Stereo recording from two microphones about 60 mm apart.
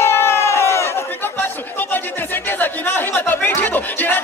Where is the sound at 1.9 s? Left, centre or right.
Left.